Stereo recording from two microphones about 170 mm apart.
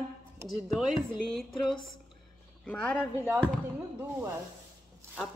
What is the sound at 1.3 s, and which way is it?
A woman's voice, centre (ahead or behind).